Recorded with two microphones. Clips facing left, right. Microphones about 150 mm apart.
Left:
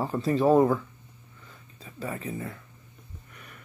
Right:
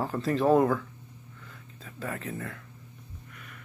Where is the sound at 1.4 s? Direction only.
5° left (ahead or behind).